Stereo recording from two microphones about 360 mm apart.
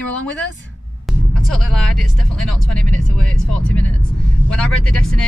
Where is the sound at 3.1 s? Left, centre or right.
Centre.